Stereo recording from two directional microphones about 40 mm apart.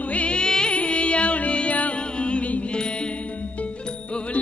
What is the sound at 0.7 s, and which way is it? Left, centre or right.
Music, left.